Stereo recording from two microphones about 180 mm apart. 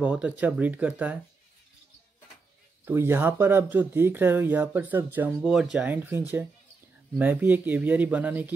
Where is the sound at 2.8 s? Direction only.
15° right (ahead or behind).